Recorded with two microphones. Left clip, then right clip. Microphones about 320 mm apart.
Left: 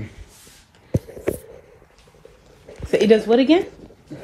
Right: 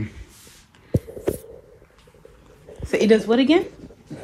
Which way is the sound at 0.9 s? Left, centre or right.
Right.